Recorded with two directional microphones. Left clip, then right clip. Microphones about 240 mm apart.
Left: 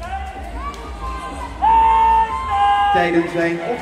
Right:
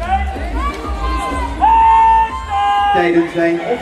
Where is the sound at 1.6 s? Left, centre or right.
Right.